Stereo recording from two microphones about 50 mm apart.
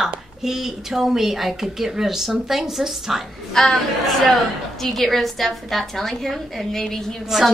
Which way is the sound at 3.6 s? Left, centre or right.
Centre.